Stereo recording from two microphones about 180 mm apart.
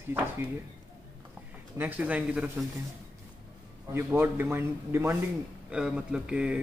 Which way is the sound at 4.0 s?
10° right (ahead or behind).